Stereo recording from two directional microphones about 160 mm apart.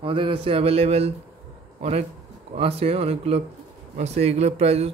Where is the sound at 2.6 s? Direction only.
40° right (ahead or behind).